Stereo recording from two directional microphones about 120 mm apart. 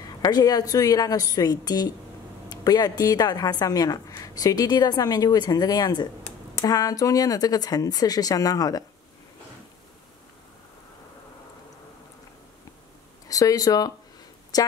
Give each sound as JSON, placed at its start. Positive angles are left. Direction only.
{"t": 0.2, "sound": "a woman's voice", "side_deg": 30}
{"t": 13.3, "sound": "a woman's voice", "side_deg": 30}